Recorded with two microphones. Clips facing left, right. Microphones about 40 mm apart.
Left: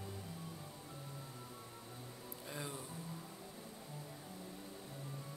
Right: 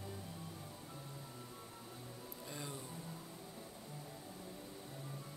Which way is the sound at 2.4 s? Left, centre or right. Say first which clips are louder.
Left 2 dB; centre.